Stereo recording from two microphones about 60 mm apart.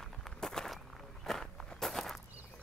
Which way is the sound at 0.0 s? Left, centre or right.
Centre.